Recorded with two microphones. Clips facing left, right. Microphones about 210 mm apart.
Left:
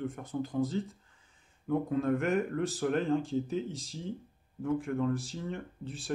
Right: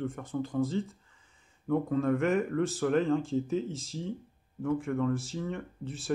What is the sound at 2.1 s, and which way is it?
A man's voice, centre (ahead or behind).